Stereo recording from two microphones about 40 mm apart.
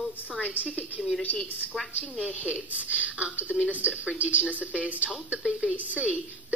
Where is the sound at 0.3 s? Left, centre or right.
Left.